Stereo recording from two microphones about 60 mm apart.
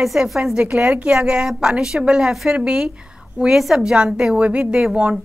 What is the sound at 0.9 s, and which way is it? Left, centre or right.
A woman's voice, right.